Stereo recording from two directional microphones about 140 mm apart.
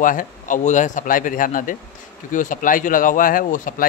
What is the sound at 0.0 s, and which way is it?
Speech, 70° left (ahead or behind).